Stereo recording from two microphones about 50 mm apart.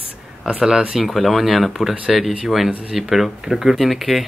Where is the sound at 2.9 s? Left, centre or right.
Centre.